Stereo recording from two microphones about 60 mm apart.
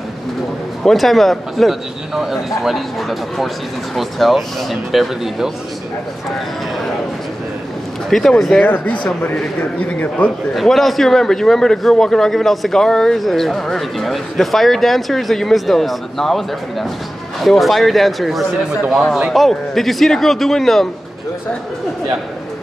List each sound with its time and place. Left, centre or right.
0.8 s a man's voice: centre
8.1 s speech: centre
9.3 s a man's voice: centre
10.5 s a man's voice: centre